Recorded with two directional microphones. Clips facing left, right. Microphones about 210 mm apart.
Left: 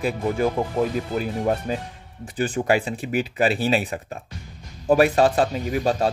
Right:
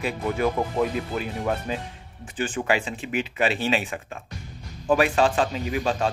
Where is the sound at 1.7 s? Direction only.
40° left (ahead or behind).